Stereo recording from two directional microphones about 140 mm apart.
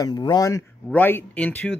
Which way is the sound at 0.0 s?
30° left (ahead or behind).